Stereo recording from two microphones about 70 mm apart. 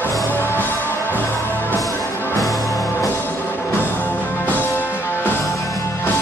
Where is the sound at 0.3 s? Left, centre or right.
Left.